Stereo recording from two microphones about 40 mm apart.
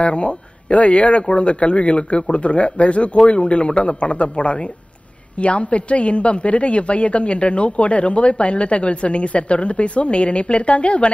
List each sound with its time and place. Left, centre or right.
0.0 s a woman's voice: left